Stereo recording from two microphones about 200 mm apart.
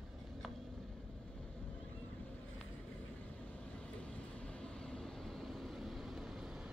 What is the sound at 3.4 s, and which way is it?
Vehicle, 5° left (ahead or behind).